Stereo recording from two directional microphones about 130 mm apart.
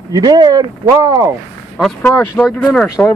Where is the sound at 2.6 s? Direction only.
5° left (ahead or behind).